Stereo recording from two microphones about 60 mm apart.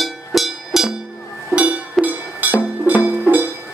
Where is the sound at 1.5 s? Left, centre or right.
Right.